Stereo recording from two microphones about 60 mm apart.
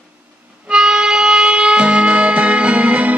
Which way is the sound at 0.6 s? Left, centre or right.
Centre.